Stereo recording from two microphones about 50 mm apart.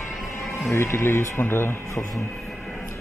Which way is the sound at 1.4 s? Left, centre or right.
Left.